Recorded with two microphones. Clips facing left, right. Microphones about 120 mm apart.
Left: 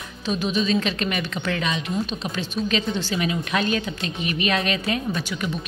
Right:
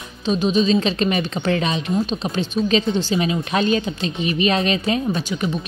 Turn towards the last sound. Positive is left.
turn(degrees=-30)  # may be behind; listen again after turning